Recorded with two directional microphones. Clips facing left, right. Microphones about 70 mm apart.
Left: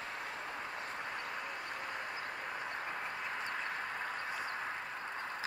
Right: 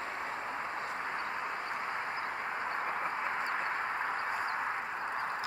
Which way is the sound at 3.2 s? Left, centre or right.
Right.